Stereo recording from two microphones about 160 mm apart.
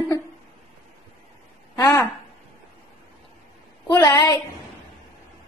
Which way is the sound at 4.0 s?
25° left (ahead or behind).